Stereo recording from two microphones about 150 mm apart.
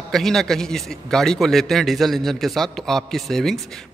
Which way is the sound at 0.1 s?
Centre (ahead or behind).